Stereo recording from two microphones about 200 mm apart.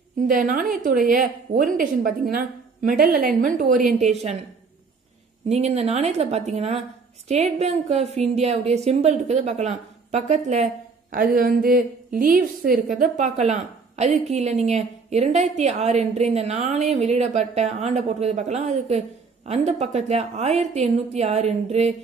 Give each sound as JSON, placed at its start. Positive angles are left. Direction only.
{"t": 0.3, "sound": "a woman's voice", "side_deg": -40}
{"t": 5.5, "sound": "a woman's voice", "side_deg": -35}